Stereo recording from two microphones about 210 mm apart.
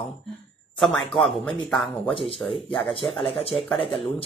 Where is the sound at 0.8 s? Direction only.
Centre (ahead or behind).